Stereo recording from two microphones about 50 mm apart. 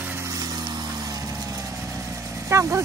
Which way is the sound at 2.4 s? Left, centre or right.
Right.